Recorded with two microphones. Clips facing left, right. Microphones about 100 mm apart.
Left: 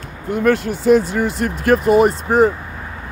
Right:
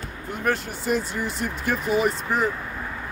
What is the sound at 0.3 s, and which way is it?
Speech, 80° left.